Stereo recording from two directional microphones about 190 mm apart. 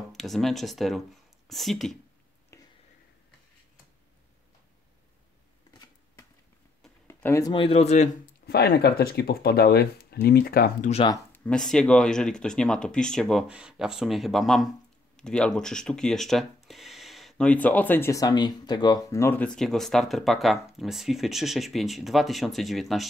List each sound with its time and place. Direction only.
0.1 s speech: centre (ahead or behind)
2.5 s a sound: 15° left (ahead or behind)
7.1 s speech: 10° left (ahead or behind); by 8.1 s 35° left (ahead or behind)
8.5 s speech: 55° left (ahead or behind)
10.9 s speech: 30° left (ahead or behind)
11.3 s speech: 5° left (ahead or behind)